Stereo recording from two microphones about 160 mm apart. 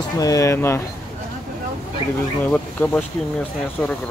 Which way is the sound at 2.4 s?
10° left (ahead or behind).